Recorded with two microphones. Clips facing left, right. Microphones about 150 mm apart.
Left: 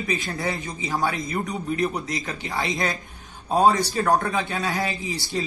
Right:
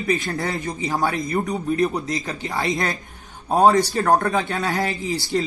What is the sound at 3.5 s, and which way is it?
Speech, 45° right (ahead or behind).